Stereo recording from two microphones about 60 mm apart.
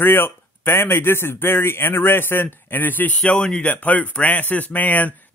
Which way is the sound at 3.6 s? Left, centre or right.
Left.